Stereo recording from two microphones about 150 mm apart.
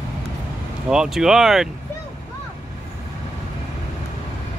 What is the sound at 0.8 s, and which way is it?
Speech, 5° right (ahead or behind).